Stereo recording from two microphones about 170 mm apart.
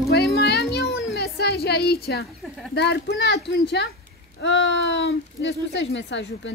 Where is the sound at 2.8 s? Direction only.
90° left.